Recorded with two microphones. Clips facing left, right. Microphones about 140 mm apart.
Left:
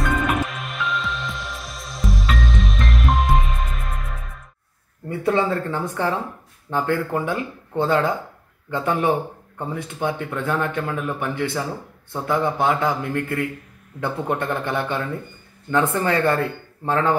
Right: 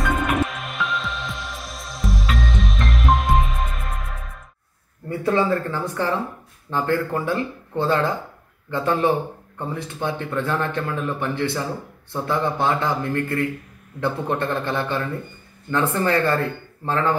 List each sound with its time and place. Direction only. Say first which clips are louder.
0.0 s music: even; centre (ahead or behind)
5.2 s speech: even; 15° left (ahead or behind)